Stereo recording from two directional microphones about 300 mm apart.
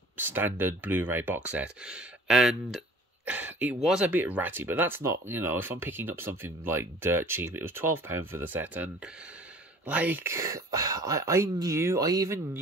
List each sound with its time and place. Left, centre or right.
0.3 s speech: centre